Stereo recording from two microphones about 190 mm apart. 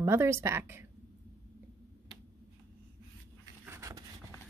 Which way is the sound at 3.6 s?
15° right (ahead or behind).